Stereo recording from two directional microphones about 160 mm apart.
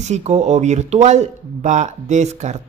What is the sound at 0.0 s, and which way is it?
Speech, 45° right (ahead or behind).